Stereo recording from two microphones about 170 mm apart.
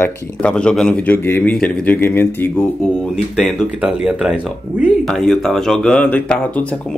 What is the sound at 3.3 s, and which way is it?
Speech, centre (ahead or behind).